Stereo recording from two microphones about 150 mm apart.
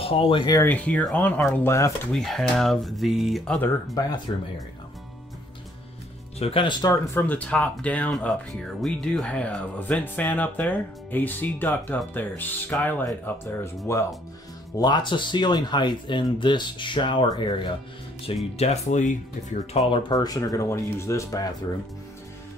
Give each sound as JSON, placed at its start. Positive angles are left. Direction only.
{"t": 0.0, "sound": "speech", "side_deg": 40}
{"t": 0.6, "sound": "speech", "side_deg": 10}
{"t": 2.1, "sound": "speech", "side_deg": 0}
{"t": 4.3, "sound": "speech", "side_deg": 35}
{"t": 6.4, "sound": "speech", "side_deg": 35}
{"t": 7.2, "sound": "speech", "side_deg": 10}
{"t": 14.8, "sound": "speech", "side_deg": 30}
{"t": 18.2, "sound": "speech", "side_deg": 45}
{"t": 19.9, "sound": "speech", "side_deg": 30}